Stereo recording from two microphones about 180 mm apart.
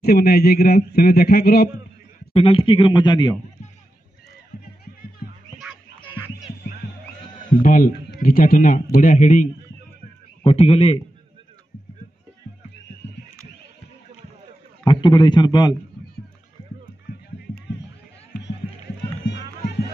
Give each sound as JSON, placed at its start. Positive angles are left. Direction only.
{"t": 0.0, "sound": "a man's voice", "side_deg": 60}
{"t": 2.3, "sound": "speech", "side_deg": 30}
{"t": 5.6, "sound": "a sound", "side_deg": 0}
{"t": 7.4, "sound": "a man's voice", "side_deg": 50}
{"t": 10.4, "sound": "a man's voice", "side_deg": 35}
{"t": 14.9, "sound": "speech", "side_deg": 25}
{"t": 17.1, "sound": "music", "side_deg": 80}
{"t": 19.2, "sound": "music", "side_deg": 70}